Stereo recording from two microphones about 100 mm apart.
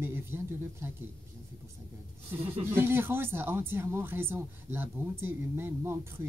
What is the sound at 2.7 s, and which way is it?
Speech, 20° right (ahead or behind).